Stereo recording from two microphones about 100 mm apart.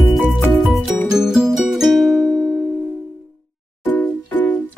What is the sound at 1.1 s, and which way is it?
Music, 5° right (ahead or behind).